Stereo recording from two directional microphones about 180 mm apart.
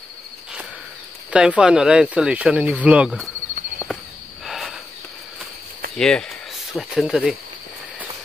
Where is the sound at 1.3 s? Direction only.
5° right (ahead or behind).